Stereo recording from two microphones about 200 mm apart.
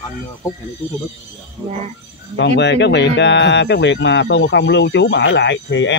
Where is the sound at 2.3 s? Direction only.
60° left (ahead or behind).